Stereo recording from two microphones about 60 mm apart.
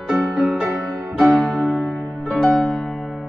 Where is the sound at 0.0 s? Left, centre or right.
Centre.